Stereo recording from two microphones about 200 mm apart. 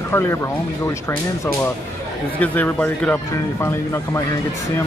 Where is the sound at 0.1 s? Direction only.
10° left (ahead or behind).